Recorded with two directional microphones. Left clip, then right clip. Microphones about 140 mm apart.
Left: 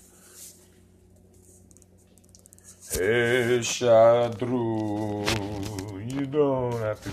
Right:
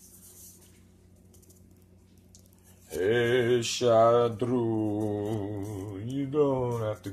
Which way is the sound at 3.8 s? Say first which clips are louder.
Left 4 dB; 15° right (ahead or behind).